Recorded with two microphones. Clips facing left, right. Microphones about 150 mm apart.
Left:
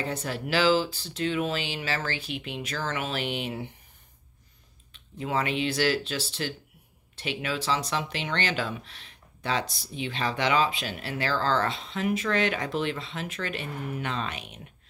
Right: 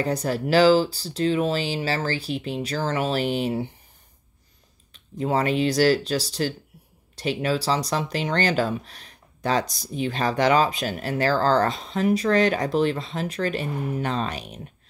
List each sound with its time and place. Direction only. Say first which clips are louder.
0.0 s speech: right 7 dB; 40° right (ahead or behind)
4.9 s speech: right 5 dB; 35° right (ahead or behind)